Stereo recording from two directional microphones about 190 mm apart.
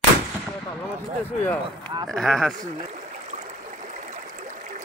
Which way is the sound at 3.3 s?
40° right (ahead or behind).